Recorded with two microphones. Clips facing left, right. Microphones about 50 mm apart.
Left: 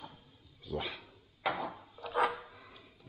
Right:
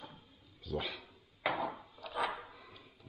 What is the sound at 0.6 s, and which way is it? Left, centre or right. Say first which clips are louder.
Dog: even; centre.